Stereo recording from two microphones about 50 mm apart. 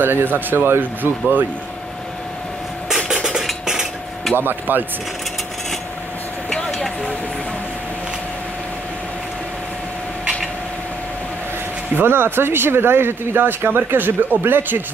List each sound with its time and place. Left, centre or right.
0.0 s speech: right
3.1 s music: centre
4.4 s speech: right
6.7 s a sound: centre
11.9 s speech: right